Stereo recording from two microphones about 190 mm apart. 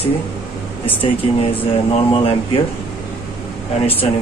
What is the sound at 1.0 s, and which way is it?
Speech, 30° left (ahead or behind).